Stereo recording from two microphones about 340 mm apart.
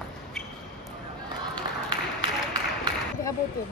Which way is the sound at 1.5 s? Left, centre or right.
Centre.